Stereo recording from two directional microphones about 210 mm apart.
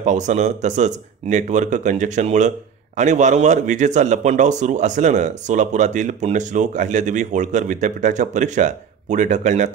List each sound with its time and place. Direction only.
0.0 s a man's voice: 35° right (ahead or behind)